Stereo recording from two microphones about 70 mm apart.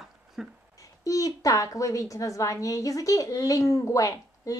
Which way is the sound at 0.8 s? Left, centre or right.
Left.